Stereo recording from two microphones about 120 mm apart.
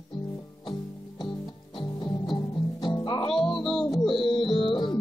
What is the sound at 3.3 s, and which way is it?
Music, centre (ahead or behind).